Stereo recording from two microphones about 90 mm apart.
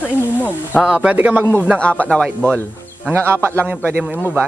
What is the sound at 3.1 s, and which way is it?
Speech, 25° right (ahead or behind).